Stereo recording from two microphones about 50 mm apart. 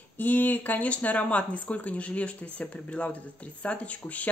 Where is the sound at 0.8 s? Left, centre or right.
Left.